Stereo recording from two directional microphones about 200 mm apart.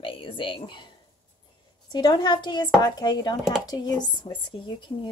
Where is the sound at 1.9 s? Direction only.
20° left (ahead or behind).